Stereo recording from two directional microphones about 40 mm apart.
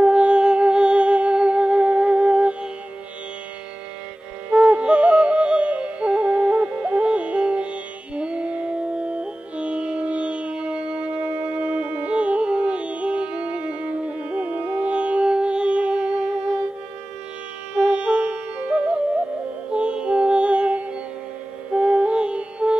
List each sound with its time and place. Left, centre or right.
0.0 s music: right
4.5 s music: right
17.7 s music: right
19.7 s music: right